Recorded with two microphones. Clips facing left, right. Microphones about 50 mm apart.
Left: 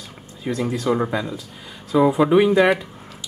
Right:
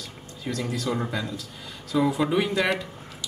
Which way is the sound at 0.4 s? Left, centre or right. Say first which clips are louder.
Left 6 dB; left.